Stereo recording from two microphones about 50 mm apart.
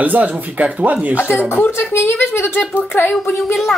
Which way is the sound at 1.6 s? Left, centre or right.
Left.